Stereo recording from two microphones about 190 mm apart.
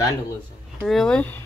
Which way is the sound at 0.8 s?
Centre (ahead or behind).